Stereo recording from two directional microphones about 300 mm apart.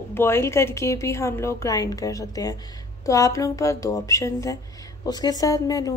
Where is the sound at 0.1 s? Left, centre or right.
Centre.